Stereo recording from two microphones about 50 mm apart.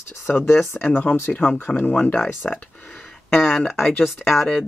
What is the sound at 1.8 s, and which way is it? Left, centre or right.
Speech, left.